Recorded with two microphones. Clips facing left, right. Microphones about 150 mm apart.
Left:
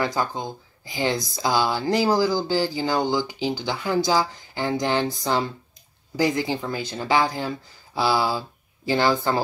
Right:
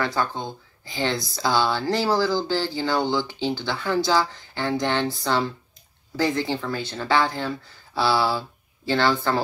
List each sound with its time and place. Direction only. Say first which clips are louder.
0.0 s speech: even; 15° left (ahead or behind)